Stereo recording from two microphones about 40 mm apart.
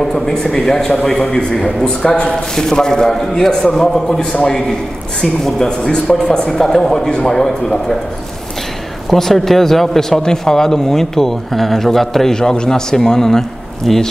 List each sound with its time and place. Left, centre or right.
0.1 s speech: centre
9.1 s speech: centre